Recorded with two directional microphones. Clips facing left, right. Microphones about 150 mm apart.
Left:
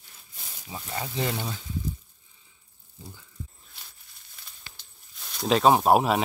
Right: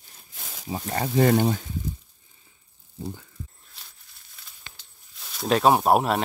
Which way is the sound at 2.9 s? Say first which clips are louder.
Right 12 dB; 70° right (ahead or behind).